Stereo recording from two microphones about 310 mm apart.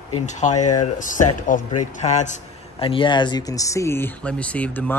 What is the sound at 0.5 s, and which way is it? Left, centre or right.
Speech, left.